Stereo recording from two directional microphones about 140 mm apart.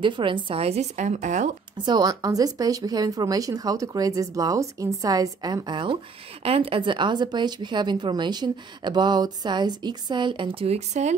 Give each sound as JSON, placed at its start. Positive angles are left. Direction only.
{"t": 0.0, "sound": "a woman's voice", "side_deg": -35}
{"t": 1.9, "sound": "speech", "side_deg": -30}